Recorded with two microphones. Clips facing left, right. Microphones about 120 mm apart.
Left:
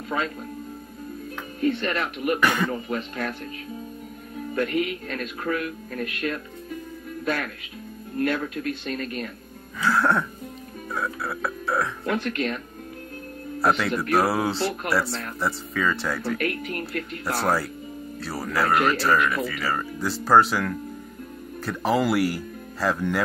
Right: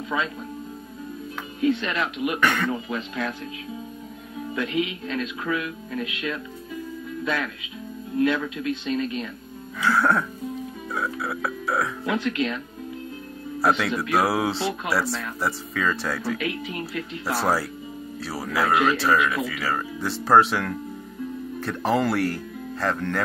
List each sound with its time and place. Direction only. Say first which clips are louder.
1.6 s speech: right 1 dB; 45° left (ahead or behind)
2.4 s speech: right 1 dB; 5° left (ahead or behind)
2.9 s speech: even; 45° left (ahead or behind)
4.6 s speech: left 2 dB; 50° left (ahead or behind)
8.2 s speech: right 2 dB; 50° left (ahead or behind)
9.8 s speech: right 1 dB; centre (ahead or behind)
12.1 s speech: right 2 dB; 50° left (ahead or behind)
13.6 s speech: even; centre (ahead or behind)
16.3 s speech: left 1 dB; 55° left (ahead or behind)
17.3 s speech: even; centre (ahead or behind)